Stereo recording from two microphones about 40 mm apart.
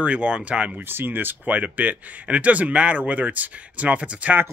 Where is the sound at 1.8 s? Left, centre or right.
Right.